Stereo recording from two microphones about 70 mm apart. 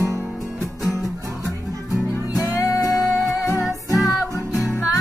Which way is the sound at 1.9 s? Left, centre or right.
Centre.